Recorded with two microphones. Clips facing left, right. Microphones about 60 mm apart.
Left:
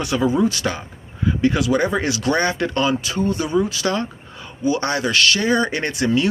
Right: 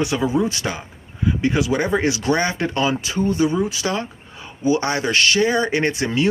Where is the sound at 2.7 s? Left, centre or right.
Centre.